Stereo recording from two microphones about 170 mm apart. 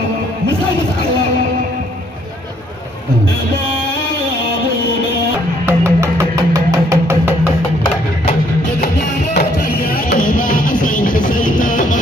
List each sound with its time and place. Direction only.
5.7 s music: 15° right (ahead or behind)
8.8 s music: 65° left (ahead or behind)